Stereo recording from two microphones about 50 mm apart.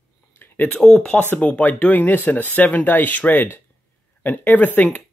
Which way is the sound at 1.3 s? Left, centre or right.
Left.